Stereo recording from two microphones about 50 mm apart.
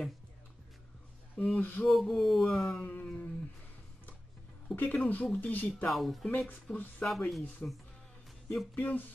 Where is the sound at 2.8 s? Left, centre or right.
Left.